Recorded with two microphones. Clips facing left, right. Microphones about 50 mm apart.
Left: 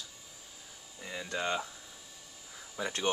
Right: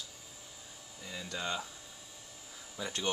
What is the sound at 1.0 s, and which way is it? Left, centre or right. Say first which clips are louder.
Speech: left 4 dB; left.